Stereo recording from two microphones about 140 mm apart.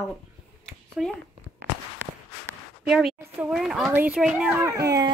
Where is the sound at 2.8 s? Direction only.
5° right (ahead or behind).